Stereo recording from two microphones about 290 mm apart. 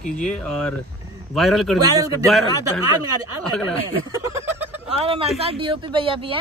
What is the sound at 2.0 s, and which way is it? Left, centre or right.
Speech, centre.